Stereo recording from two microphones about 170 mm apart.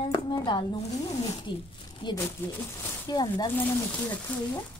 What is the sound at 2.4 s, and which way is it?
Speech, 10° left (ahead or behind).